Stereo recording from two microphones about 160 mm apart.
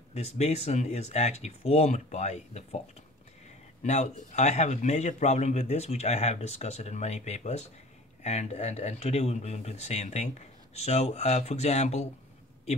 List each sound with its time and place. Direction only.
0.1 s speech: 45° left (ahead or behind)
3.8 s speech: 45° left (ahead or behind)